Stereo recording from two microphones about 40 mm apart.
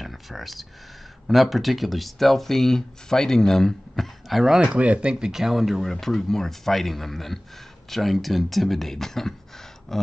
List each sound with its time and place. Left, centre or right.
0.0 s speech: centre
4.7 s speech: right
5.2 s speech: centre
9.9 s a sound: centre